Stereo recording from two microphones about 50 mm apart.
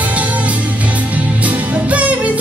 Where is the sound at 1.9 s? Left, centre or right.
Right.